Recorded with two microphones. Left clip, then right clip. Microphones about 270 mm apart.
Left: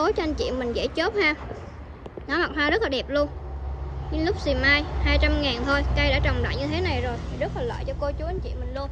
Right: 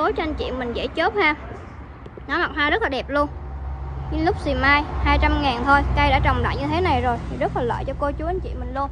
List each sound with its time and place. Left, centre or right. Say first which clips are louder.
0.0 s a woman's voice: right 1 dB; centre
8.2 s a woman's voice: right 6 dB; centre